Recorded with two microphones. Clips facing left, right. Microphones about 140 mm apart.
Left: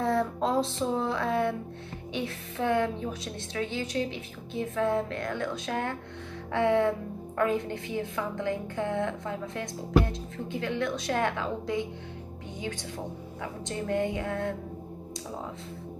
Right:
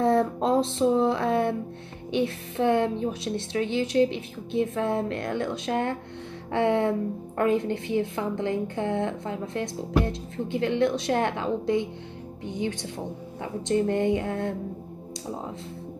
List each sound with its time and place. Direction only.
0.0 s a woman's voice: 25° right (ahead or behind)
13.4 s a woman's voice: 25° right (ahead or behind)